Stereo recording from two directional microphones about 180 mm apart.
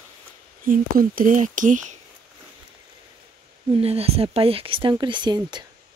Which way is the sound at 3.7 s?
35° right (ahead or behind).